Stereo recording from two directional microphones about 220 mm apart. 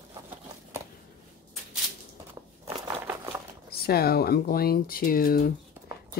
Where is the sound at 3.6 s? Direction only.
45° left (ahead or behind).